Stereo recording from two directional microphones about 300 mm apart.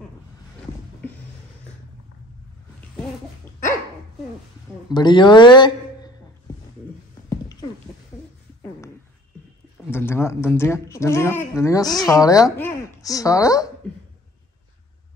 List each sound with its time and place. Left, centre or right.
4.9 s speech: centre
9.8 s speech: centre